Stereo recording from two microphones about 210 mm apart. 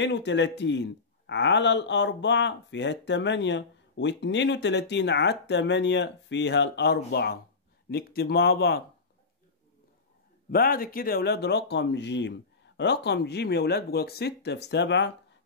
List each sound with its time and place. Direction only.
0.0 s speech: 55° left (ahead or behind)
10.5 s speech: 45° left (ahead or behind)